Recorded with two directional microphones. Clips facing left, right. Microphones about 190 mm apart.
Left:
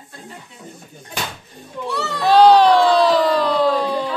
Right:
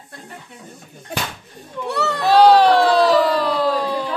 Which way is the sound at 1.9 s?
60° right (ahead or behind).